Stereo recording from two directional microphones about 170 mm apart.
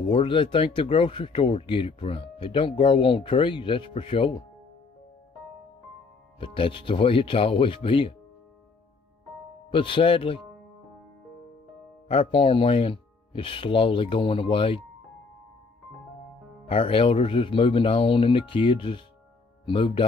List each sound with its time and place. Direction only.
0.1 s speech: 30° left (ahead or behind)
6.4 s speech: 30° left (ahead or behind)
9.7 s speech: 30° left (ahead or behind)
12.1 s speech: 30° left (ahead or behind)
16.6 s speech: 30° left (ahead or behind)